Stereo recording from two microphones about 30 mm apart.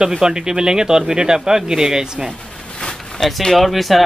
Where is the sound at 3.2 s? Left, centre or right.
Centre.